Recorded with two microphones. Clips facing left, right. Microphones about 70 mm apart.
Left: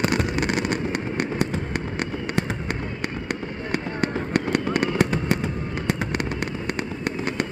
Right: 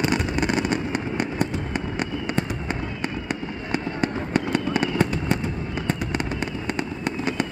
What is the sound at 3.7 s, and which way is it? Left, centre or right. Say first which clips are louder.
Fireworks: even; left.